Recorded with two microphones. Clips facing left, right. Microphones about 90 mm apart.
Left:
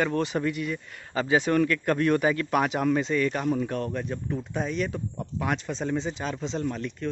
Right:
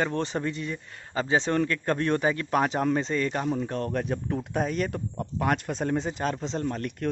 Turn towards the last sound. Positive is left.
turn(degrees=-60)  # may be behind; listen again after turning